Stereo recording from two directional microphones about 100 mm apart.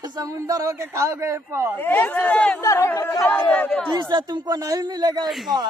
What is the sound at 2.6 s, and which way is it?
Speech, 30° left (ahead or behind).